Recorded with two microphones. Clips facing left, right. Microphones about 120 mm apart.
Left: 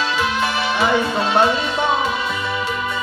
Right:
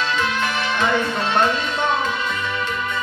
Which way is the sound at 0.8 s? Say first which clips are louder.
Left 3 dB; 5° left (ahead or behind).